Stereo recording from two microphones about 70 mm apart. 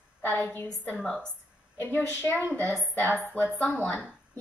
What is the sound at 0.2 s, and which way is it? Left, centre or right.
Speech, left.